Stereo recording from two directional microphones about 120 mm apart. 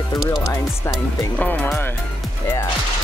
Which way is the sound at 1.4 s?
10° left (ahead or behind).